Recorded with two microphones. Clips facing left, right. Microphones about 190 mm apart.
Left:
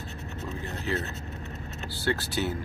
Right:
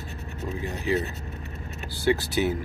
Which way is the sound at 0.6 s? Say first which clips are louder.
Right 6 dB; 15° right (ahead or behind).